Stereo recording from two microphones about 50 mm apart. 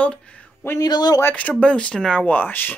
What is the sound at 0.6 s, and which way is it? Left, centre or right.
Speech, left.